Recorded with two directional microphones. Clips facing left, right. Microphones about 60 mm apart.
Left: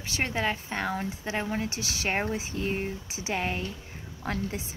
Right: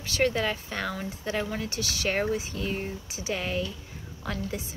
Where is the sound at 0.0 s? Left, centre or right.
Left.